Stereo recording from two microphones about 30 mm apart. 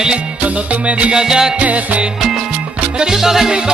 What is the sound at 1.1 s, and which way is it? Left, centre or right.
Music, right.